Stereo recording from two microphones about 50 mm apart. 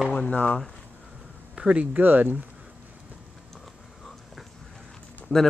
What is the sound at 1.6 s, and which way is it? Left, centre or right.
Speech, centre.